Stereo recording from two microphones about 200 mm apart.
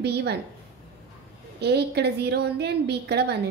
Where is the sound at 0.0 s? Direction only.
55° right (ahead or behind).